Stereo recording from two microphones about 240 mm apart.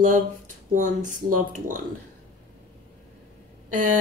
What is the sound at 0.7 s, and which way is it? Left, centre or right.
Speech, right.